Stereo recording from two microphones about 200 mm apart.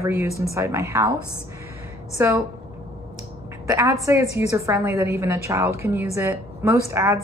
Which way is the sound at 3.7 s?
15° right (ahead or behind).